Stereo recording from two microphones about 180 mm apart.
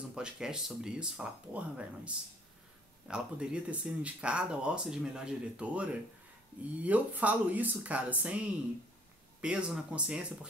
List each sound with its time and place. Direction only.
0.1 s speech: 5° right (ahead or behind)